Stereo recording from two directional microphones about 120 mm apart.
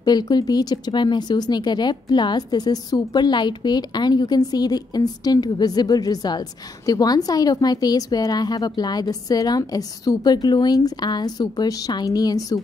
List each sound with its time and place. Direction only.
0.0 s speech: 35° left (ahead or behind)